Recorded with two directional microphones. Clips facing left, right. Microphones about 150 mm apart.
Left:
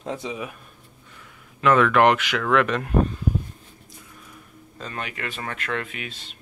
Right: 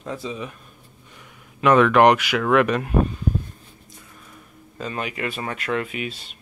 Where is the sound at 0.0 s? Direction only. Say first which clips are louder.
Even; 20° left (ahead or behind).